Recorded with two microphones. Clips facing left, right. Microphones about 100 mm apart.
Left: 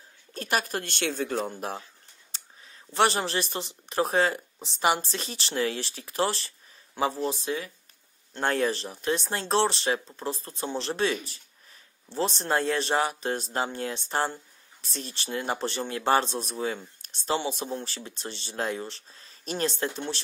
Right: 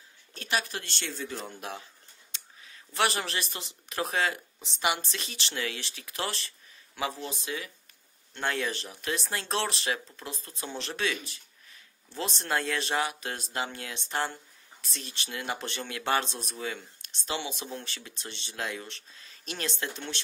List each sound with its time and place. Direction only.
0.3 s speech: 45° left (ahead or behind)
2.3 s a sound: 35° left (ahead or behind)
3.9 s speech: 35° left (ahead or behind)